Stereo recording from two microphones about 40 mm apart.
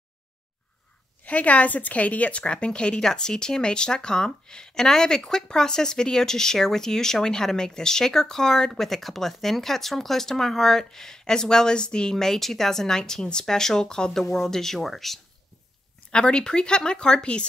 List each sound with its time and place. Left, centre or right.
1.2 s a woman's voice: left
3.0 s speech: centre
16.1 s speech: left